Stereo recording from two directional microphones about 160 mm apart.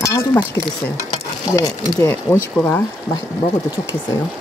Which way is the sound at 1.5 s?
20° left (ahead or behind).